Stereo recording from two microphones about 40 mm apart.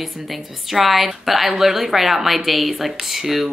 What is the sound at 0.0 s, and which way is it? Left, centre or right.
Speech, centre.